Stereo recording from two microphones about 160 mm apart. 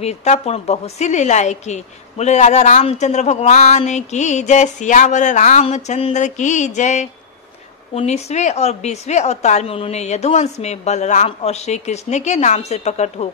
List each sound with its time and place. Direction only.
0.0 s a woman's voice: 45° left (ahead or behind)